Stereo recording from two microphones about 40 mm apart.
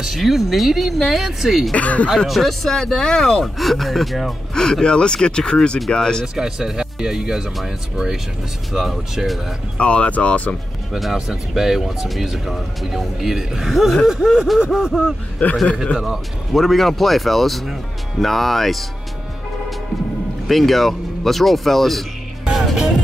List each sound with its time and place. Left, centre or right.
0.0 s speech: centre
1.7 s speech: left
2.2 s speech: centre
3.5 s speech: centre
4.6 s speech: centre
6.3 s speech: centre
8.7 s speech: centre
9.8 s speech: left
10.9 s speech: centre
15.4 s speech: left
16.0 s speech: centre
20.4 s speech: centre
22.4 s music: centre